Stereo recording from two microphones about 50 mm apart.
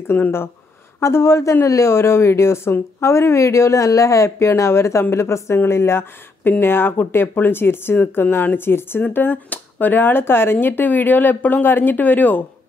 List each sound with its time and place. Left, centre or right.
0.1 s speech: left
1.0 s speech: left
6.4 s speech: left
9.0 s speech: left